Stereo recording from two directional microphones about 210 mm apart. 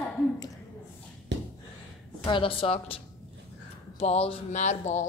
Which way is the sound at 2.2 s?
25° left (ahead or behind).